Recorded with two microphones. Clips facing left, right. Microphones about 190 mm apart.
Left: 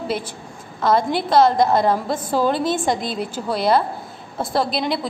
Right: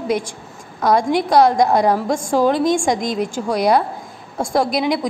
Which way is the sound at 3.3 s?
15° right (ahead or behind).